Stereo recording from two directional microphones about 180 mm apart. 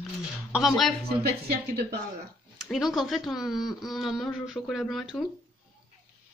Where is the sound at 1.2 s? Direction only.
65° right (ahead or behind).